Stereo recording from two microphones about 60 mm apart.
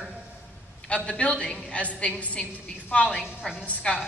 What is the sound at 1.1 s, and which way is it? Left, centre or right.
A woman's voice, left.